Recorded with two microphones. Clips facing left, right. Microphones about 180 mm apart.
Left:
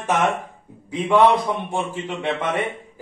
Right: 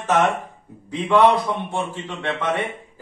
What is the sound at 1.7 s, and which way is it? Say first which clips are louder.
Speech: left 1 dB; 15° left (ahead or behind).